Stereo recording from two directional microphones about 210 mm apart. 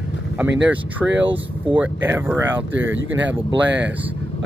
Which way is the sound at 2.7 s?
65° right (ahead or behind).